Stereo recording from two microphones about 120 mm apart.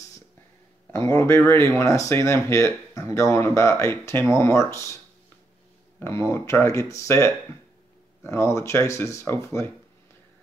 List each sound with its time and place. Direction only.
0.9 s speech: 20° left (ahead or behind)
5.9 s speech: 20° left (ahead or behind)